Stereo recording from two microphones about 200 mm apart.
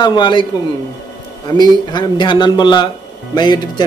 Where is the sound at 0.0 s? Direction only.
25° left (ahead or behind).